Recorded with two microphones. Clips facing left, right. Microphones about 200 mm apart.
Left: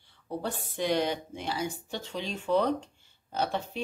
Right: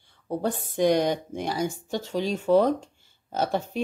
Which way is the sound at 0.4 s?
45° right (ahead or behind).